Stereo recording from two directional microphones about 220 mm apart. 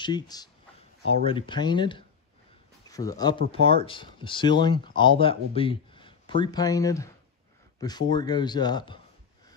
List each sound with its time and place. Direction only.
0.0 s speech: 20° left (ahead or behind)